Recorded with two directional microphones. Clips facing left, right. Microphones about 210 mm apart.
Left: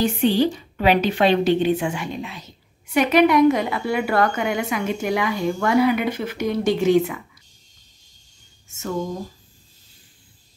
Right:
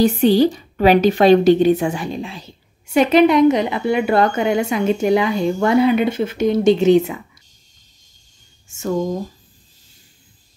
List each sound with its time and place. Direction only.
0.0 s a woman's voice: 40° right (ahead or behind)
8.6 s speech: 35° right (ahead or behind)